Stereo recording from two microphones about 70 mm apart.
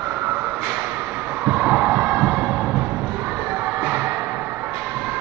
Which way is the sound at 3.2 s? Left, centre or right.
Centre.